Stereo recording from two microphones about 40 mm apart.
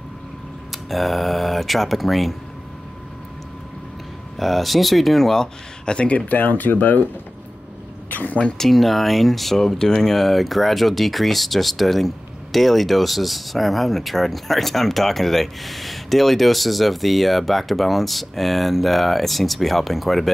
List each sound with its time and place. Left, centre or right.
0.7 s speech: centre
4.4 s speech: centre
5.9 s speech: left
8.1 s a sound: left
8.5 s speech: centre